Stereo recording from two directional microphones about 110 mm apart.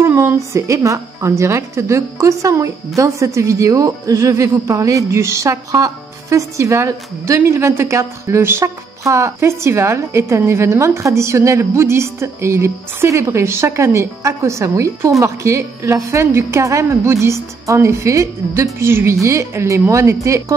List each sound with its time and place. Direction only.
0.0 s a woman's voice: 25° right (ahead or behind)